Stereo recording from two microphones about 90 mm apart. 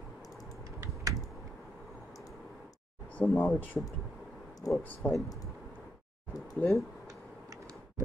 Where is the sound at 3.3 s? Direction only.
25° left (ahead or behind).